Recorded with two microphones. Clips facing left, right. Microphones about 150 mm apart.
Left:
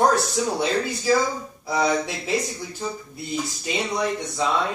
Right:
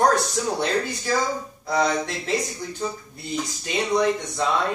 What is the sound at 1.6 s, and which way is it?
Speech, 10° left (ahead or behind).